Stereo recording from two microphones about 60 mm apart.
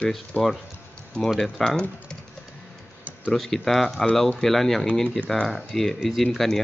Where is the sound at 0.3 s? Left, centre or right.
Left.